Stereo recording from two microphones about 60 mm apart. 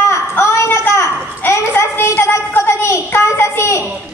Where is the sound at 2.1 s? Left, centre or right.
Left.